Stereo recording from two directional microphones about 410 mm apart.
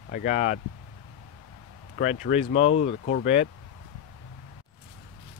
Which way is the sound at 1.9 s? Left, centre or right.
Centre.